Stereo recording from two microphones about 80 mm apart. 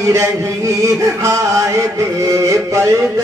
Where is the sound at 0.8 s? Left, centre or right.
Right.